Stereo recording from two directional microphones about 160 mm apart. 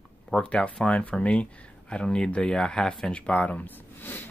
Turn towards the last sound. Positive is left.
turn(degrees=10)  # may be behind; listen again after turning